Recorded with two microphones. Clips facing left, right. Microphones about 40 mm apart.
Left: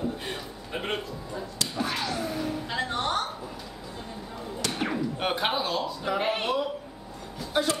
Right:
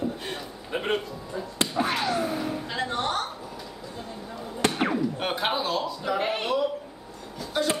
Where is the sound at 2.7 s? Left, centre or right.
Centre.